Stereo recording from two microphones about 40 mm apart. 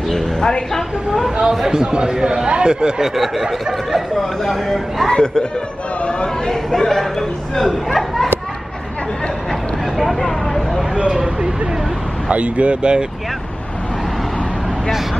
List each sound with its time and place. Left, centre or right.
0.1 s speech: centre
1.4 s speech: centre
3.2 s a sound: centre
4.2 s speech: centre
5.2 s speech: left
6.5 s speech: centre
9.9 s speech: centre
10.2 s vehicle: centre
11.0 s speech: right
12.3 s speech: right